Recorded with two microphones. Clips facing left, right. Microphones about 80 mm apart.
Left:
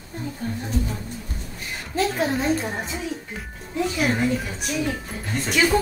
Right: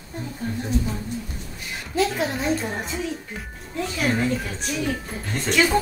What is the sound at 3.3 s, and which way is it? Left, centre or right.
Speech, centre.